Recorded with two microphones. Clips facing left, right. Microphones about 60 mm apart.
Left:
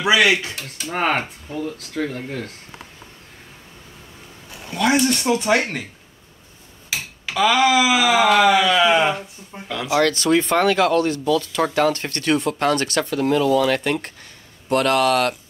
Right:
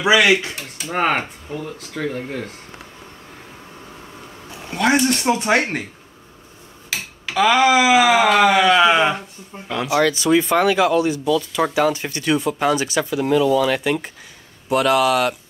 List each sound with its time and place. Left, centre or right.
0.0 s speech: centre
0.6 s speech: centre
5.0 s speech: centre
7.3 s speech: centre
9.8 s speech: centre